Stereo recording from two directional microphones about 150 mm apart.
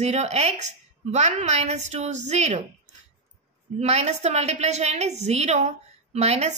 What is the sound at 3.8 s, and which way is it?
A woman's voice, 45° right (ahead or behind).